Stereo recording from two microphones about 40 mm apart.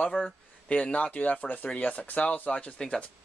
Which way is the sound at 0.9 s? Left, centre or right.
Left.